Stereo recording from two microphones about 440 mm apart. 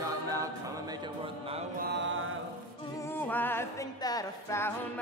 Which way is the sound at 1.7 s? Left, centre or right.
Right.